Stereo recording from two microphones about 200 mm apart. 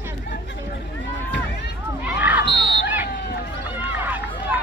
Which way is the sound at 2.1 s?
5° right (ahead or behind).